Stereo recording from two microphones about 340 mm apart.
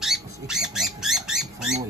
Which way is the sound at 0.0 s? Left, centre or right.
Centre.